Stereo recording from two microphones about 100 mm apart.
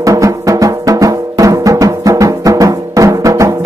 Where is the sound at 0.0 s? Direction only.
35° right (ahead or behind).